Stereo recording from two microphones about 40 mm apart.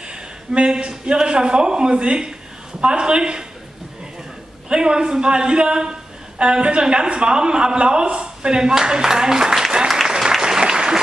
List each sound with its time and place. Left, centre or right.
0.1 s a man's voice: right
4.6 s a man's voice: right
10.0 s applause: centre